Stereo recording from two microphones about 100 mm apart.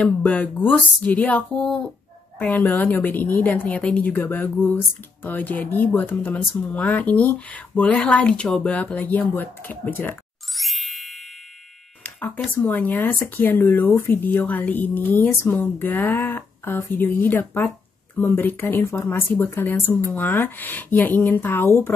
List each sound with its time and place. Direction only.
0.0 s a woman's voice: 10° left (ahead or behind)
10.5 s ding: centre (ahead or behind)
12.6 s speech: 15° left (ahead or behind)